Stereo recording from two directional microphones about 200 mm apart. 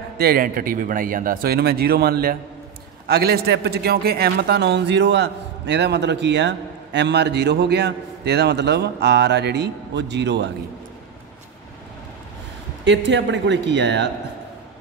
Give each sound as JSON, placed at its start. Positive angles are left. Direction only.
{"t": 0.2, "sound": "a man's voice", "side_deg": -45}
{"t": 12.8, "sound": "a man's voice", "side_deg": -60}